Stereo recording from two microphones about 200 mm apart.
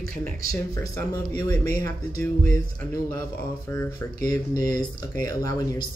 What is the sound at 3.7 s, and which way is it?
Speech, 15° left (ahead or behind).